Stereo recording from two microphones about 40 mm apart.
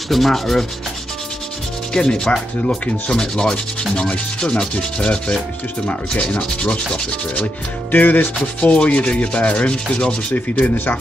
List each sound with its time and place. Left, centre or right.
0.1 s rub: centre
2.0 s rub: centre
6.6 s rub: left
7.9 s speech: left
8.5 s rub: left
10.3 s speech: left